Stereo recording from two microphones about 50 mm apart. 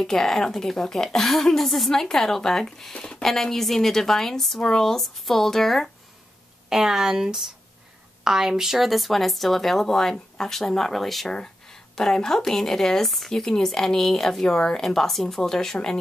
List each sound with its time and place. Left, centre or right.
0.0 s speech: centre
6.7 s speech: centre